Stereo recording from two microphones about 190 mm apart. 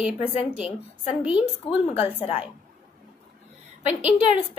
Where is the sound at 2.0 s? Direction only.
30° left (ahead or behind).